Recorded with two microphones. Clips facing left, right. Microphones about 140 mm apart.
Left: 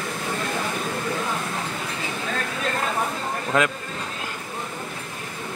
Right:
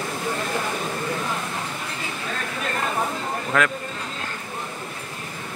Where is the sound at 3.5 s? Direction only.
20° left (ahead or behind).